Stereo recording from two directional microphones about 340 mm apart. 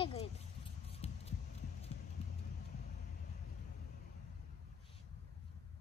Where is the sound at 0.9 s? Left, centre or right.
Centre.